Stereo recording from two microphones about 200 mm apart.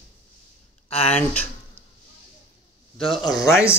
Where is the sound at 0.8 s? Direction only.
30° left (ahead or behind).